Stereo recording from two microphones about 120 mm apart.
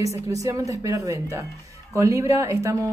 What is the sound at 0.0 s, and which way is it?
A man's voice, 25° right (ahead or behind).